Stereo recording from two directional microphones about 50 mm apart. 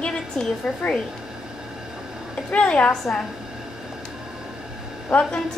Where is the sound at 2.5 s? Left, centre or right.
Left.